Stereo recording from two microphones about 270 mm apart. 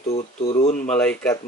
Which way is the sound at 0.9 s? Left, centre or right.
Centre.